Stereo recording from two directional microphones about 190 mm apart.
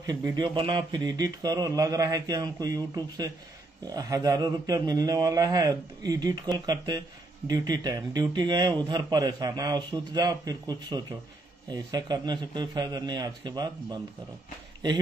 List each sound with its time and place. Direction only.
0.0 s speech: 20° right (ahead or behind)